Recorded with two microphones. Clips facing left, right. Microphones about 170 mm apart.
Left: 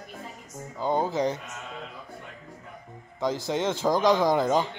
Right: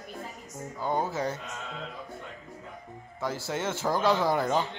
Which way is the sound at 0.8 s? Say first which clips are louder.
Left 4 dB; 20° left (ahead or behind).